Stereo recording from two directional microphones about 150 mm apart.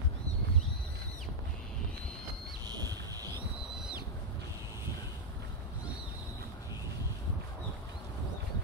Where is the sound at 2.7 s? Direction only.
25° right (ahead or behind).